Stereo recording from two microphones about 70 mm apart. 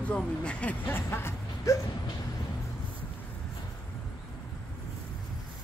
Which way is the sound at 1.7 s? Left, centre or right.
Left.